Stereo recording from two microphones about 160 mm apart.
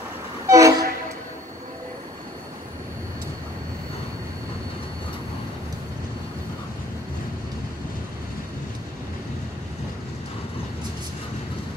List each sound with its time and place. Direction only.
0.5 s train: 20° right (ahead or behind)